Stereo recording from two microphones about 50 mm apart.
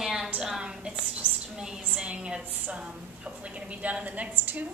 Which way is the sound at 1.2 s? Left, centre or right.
Left.